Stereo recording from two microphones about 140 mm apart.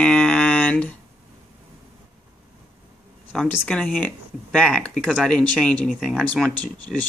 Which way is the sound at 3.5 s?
10° left (ahead or behind).